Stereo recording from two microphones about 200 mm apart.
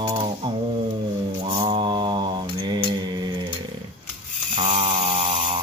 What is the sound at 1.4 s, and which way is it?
Mantra, 30° right (ahead or behind).